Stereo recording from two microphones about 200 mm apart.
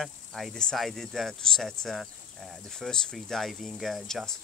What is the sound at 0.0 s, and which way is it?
Speech, centre (ahead or behind).